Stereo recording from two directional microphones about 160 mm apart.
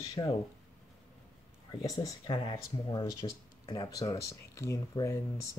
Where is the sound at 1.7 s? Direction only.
20° left (ahead or behind).